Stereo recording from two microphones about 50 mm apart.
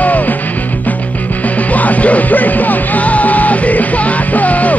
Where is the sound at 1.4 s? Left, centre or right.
Left.